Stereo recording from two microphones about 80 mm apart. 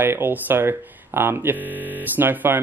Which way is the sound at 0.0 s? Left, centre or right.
Right.